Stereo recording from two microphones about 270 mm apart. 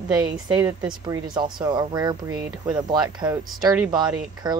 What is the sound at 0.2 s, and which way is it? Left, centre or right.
Speech, centre.